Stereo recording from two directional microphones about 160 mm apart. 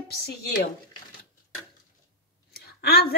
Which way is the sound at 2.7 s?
75° left (ahead or behind).